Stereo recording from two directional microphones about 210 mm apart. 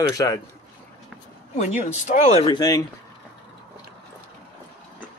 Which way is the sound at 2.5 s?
20° left (ahead or behind).